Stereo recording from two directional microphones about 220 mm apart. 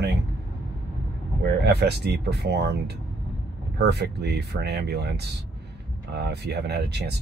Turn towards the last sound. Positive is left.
turn(degrees=-50)  # may be behind; listen again after turning